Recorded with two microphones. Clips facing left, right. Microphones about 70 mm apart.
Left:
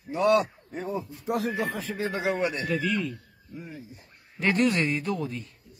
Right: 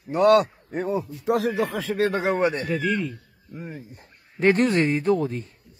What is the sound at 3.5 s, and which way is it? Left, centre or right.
Speech, right.